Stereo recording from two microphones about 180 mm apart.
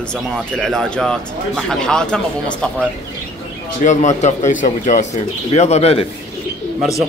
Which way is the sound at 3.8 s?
45° left (ahead or behind).